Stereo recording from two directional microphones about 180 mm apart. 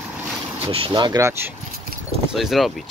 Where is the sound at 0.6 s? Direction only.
25° right (ahead or behind).